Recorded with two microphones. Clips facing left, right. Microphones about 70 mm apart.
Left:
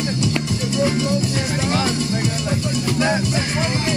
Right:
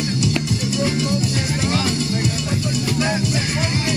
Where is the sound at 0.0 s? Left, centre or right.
Left.